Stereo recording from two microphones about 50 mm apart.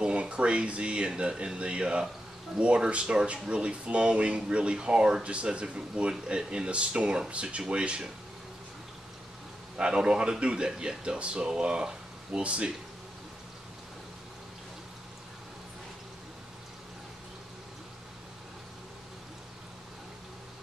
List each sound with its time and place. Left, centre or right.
0.0 s speech: right
9.8 s speech: centre